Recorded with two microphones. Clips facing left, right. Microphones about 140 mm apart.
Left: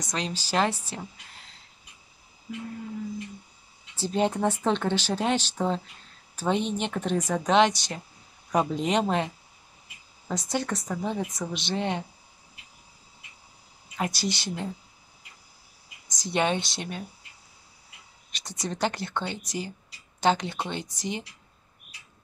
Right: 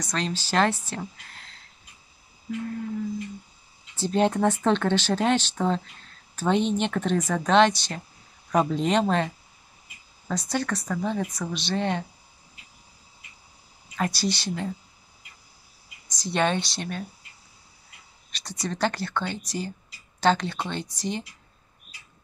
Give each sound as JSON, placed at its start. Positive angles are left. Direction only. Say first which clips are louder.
{"t": 0.0, "sound": "speech", "louder": "right 3 dB", "side_deg": 15}
{"t": 3.9, "sound": "speech", "louder": "right 3 dB", "side_deg": 10}
{"t": 13.9, "sound": "speech", "louder": "right 3 dB", "side_deg": 20}
{"t": 16.1, "sound": "speech", "louder": "right 1 dB", "side_deg": 20}
{"t": 18.3, "sound": "speech", "louder": "right 2 dB", "side_deg": 20}